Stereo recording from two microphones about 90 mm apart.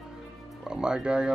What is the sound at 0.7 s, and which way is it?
Speech, 10° right (ahead or behind).